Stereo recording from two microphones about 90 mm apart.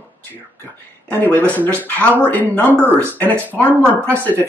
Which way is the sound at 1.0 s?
20° left (ahead or behind).